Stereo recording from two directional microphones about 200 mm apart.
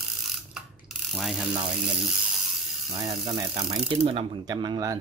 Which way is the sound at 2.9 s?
20° right (ahead or behind).